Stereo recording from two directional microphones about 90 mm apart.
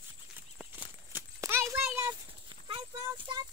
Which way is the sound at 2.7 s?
65° right (ahead or behind).